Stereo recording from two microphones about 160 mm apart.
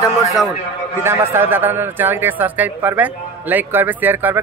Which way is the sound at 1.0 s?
15° right (ahead or behind).